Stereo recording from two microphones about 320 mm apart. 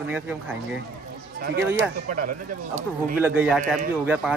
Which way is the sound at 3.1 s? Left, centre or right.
Centre.